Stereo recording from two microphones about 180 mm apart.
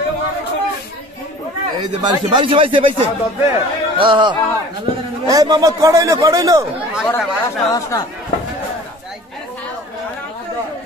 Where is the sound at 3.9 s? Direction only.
25° right (ahead or behind).